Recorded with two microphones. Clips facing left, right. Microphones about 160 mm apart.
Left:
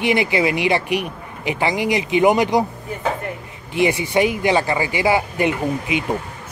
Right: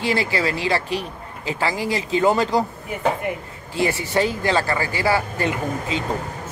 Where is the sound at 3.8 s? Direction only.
15° left (ahead or behind).